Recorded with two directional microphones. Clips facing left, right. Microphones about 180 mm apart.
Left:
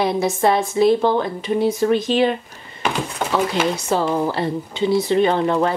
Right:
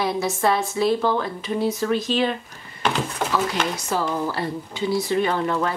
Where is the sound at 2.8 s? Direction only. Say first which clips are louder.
Left 1 dB; 10° left (ahead or behind).